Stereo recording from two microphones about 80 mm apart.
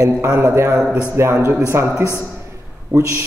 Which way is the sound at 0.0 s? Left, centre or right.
Right.